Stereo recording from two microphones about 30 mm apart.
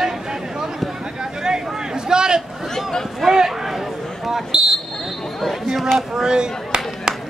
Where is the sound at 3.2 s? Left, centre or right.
Centre.